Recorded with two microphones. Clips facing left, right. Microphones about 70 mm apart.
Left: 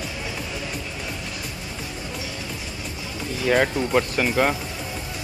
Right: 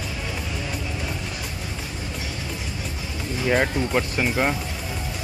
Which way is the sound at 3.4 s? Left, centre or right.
Centre.